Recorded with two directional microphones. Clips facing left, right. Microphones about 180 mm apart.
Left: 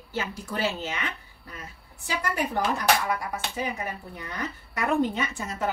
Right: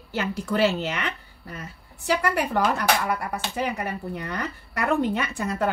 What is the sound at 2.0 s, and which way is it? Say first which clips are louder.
Speech: right 5 dB; 65° right (ahead or behind).